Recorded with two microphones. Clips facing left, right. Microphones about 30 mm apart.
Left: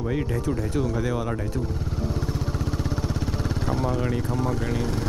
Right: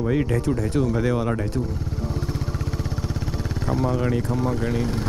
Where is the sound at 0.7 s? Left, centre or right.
Right.